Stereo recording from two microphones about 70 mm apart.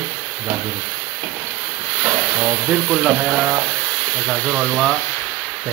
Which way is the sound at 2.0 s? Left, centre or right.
Centre.